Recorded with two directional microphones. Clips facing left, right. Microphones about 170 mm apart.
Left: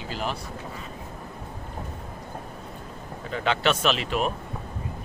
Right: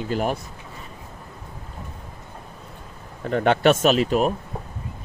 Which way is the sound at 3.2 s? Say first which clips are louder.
Right 7 dB; 55° right (ahead or behind).